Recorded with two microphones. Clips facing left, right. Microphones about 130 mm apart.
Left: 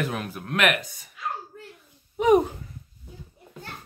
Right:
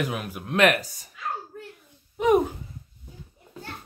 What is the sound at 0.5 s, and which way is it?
Speech, 35° right (ahead or behind).